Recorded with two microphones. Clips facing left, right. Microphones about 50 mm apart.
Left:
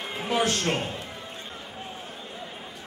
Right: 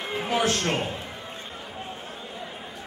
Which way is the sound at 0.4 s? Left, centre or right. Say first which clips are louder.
Even; right.